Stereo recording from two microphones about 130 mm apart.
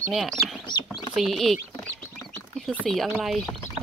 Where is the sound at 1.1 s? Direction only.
Centre (ahead or behind).